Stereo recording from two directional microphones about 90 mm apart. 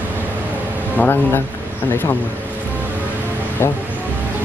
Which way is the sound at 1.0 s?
20° left (ahead or behind).